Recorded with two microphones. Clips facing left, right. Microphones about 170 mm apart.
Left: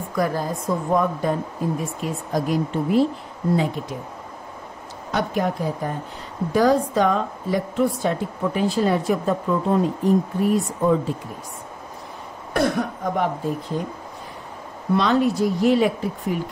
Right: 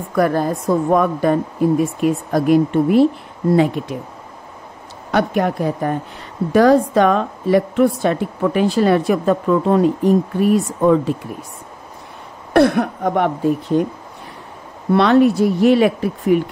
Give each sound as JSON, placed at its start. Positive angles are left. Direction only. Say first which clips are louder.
{"t": 0.1, "sound": "a woman's voice", "louder": "right 7 dB", "side_deg": -60}
{"t": 5.1, "sound": "a woman's voice", "louder": "right 6 dB", "side_deg": -65}
{"t": 12.5, "sound": "a woman's voice", "louder": "right 8 dB", "side_deg": -65}
{"t": 14.9, "sound": "speech", "louder": "right 7 dB", "side_deg": -65}